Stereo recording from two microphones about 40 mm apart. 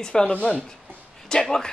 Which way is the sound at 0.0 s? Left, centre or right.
Centre.